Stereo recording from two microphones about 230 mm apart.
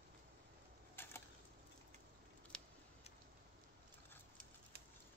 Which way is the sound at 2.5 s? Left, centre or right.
Centre.